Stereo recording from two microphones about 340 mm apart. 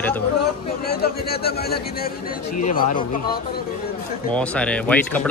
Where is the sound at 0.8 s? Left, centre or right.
Left.